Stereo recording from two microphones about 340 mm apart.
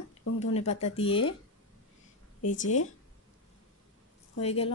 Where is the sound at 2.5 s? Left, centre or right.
Left.